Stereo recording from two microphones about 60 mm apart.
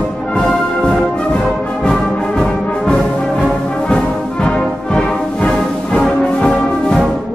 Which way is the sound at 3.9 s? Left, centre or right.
Centre.